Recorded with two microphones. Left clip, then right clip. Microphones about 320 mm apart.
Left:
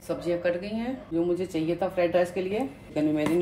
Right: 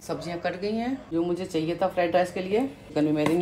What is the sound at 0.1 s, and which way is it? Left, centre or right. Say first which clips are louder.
Speech: left 3 dB; centre.